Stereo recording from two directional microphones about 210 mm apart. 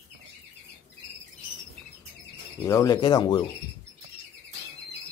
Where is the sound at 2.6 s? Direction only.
15° left (ahead or behind).